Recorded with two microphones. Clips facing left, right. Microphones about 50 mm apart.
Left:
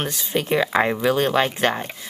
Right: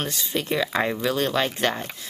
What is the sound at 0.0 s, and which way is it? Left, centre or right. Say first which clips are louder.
Speech: left 3 dB; left.